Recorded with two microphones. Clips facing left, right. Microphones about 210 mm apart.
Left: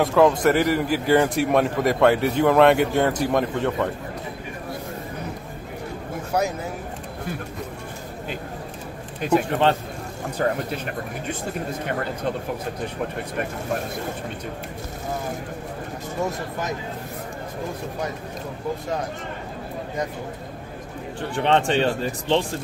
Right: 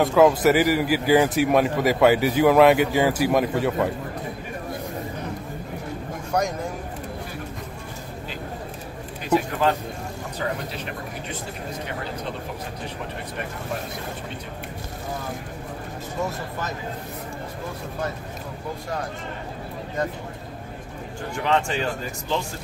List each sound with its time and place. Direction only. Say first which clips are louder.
0.0 s a man's voice: right 1 dB; centre (ahead or behind)
6.3 s a man's voice: even; 5° left (ahead or behind)
10.4 s speech: left 5 dB; 45° left (ahead or behind)
21.4 s speech: left 4 dB; 30° left (ahead or behind)